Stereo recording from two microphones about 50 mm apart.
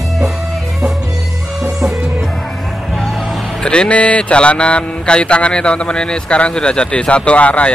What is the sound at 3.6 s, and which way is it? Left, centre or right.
Speech, left.